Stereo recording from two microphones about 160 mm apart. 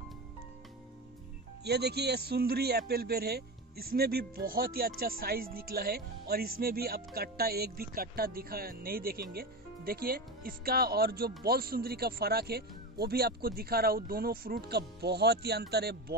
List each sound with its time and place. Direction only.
1.6 s a man's voice: 90° right